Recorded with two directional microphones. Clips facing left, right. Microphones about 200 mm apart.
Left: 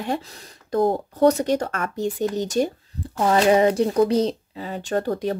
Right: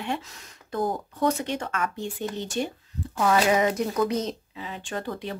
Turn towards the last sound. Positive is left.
turn(degrees=40)  # may be behind; listen again after turning